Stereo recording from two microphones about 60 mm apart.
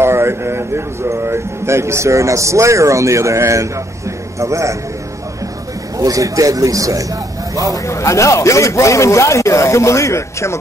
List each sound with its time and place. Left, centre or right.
0.0 s a sound: right
1.0 s a man's voice: right
5.9 s speech: right
7.7 s speech: left